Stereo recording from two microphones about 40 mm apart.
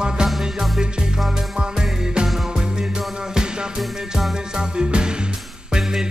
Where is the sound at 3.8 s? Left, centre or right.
Centre.